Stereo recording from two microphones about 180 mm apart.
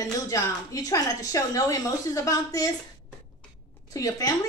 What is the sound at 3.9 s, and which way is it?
Speech, 20° left (ahead or behind).